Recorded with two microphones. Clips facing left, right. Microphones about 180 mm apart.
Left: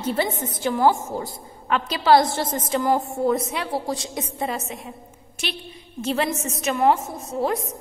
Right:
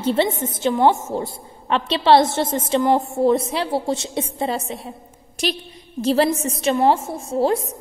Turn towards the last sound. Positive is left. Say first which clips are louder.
# right 5 dB
turn(degrees=-30)  # may be behind; listen again after turning